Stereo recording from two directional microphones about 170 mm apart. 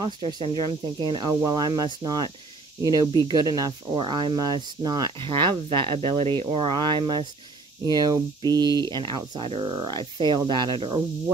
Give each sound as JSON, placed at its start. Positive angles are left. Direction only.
{"t": 0.0, "sound": "speech", "side_deg": -25}